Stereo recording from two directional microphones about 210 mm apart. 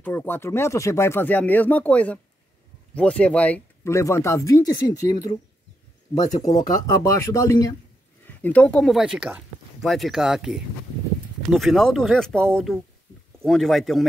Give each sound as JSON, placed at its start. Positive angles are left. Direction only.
{"t": 0.0, "sound": "speech", "side_deg": 10}
{"t": 6.1, "sound": "speech", "side_deg": 20}